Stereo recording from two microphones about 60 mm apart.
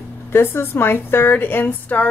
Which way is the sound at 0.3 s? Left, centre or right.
Left.